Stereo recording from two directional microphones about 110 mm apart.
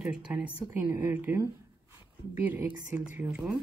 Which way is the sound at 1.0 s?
20° right (ahead or behind).